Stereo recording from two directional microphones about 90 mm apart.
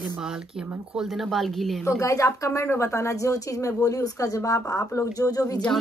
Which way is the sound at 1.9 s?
35° left (ahead or behind).